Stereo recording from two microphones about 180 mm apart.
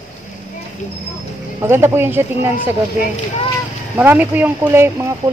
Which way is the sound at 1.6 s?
15° right (ahead or behind).